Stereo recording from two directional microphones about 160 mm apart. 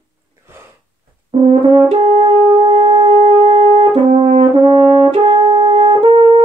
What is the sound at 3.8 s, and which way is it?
French horn, 35° right (ahead or behind).